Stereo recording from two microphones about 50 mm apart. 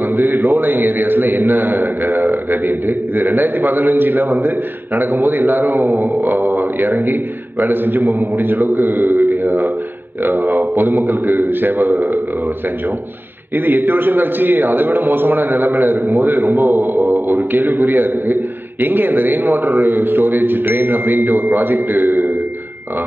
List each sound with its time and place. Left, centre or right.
0.1 s a man's voice: right
9.3 s a sound: right
10.2 s a man's voice: right
13.7 s a man's voice: right